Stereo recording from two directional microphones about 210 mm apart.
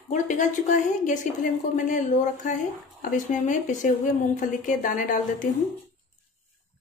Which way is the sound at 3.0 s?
35° left (ahead or behind).